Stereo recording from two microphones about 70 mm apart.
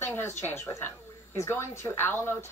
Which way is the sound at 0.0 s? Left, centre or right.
Left.